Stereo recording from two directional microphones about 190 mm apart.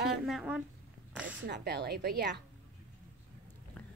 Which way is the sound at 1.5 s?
60° right (ahead or behind).